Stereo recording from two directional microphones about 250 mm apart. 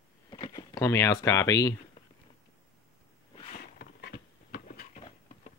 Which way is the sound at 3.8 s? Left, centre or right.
Left.